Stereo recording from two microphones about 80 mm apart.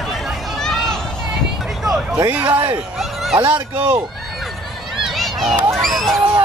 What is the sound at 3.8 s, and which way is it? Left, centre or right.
Speech, right.